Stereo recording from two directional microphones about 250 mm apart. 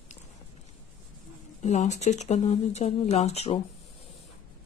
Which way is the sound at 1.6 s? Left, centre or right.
Left.